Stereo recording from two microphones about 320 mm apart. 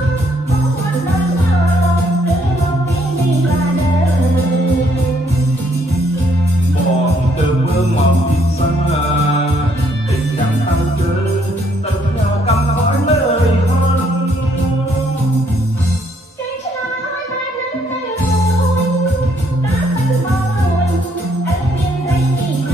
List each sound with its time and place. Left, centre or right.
12.4 s music: centre